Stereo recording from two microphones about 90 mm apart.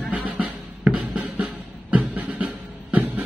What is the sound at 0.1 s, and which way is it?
Music, 20° right (ahead or behind).